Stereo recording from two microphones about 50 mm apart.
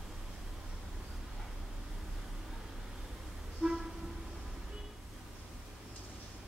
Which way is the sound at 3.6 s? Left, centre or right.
Centre.